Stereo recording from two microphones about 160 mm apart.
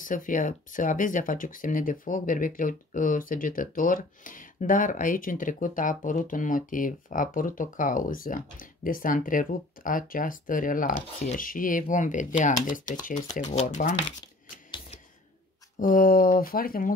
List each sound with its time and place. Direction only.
0.0 s speech: 55° left (ahead or behind)
15.8 s speech: 60° left (ahead or behind)